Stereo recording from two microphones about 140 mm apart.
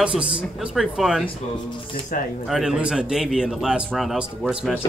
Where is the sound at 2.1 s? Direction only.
90° left.